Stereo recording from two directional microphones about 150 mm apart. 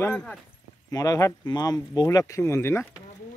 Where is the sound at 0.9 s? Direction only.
25° left (ahead or behind).